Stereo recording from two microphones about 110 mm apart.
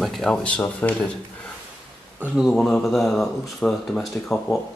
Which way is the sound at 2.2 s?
5° right (ahead or behind).